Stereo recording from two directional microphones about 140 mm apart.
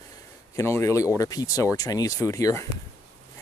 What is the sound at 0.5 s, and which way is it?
Speech, 20° left (ahead or behind).